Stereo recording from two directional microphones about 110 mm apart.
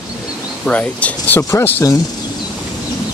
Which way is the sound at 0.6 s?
10° left (ahead or behind).